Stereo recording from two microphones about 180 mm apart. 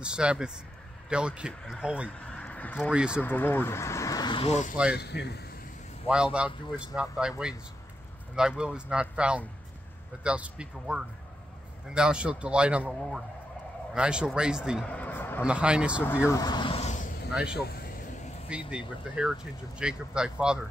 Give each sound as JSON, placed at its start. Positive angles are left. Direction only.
{"t": 0.0, "sound": "speech", "side_deg": -5}
{"t": 2.3, "sound": "a sound", "side_deg": 5}
{"t": 2.9, "sound": "speech", "side_deg": -5}
{"t": 3.2, "sound": "speech", "side_deg": 10}
{"t": 4.9, "sound": "speech", "side_deg": 65}
{"t": 6.0, "sound": "speech", "side_deg": -5}
{"t": 14.9, "sound": "a sound", "side_deg": 10}
{"t": 15.4, "sound": "speech", "side_deg": -5}
{"t": 16.3, "sound": "vehicle", "side_deg": 20}
{"t": 17.3, "sound": "speech", "side_deg": -5}
{"t": 18.7, "sound": "speech", "side_deg": -5}